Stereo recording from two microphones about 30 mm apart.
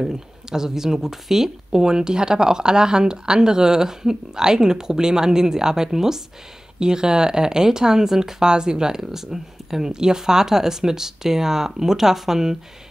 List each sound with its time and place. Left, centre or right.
0.0 s speech: centre
1.7 s speech: right
8.4 s speech: right
9.0 s speech: centre